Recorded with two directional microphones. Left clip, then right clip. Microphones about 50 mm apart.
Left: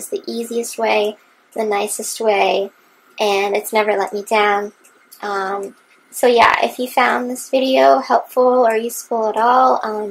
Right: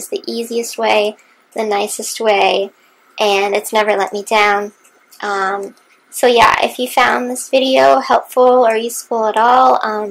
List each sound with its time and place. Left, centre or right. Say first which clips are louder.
0.1 s a woman's voice: right 3 dB; right